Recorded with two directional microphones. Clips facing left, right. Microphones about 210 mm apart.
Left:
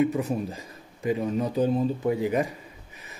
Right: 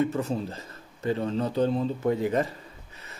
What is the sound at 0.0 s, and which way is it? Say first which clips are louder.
Speech: left 2 dB; 15° left (ahead or behind).